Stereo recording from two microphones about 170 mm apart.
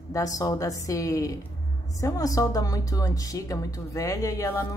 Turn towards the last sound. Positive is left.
turn(degrees=15)  # may be behind; listen again after turning